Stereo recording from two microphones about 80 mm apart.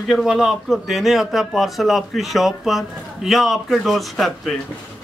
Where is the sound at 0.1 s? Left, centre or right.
Centre.